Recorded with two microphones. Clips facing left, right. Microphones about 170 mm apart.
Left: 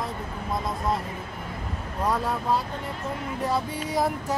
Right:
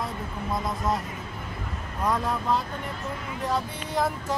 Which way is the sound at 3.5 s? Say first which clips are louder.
Even; 10° left (ahead or behind).